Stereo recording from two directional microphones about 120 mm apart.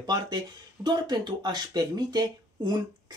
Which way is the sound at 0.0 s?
35° right (ahead or behind).